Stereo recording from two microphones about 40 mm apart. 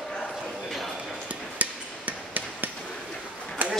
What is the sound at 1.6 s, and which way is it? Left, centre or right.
Hammer, right.